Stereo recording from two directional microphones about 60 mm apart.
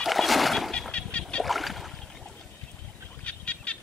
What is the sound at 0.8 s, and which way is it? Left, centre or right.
Fowl, centre.